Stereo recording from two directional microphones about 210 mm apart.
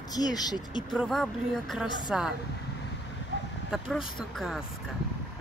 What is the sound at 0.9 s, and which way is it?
Speech, centre (ahead or behind).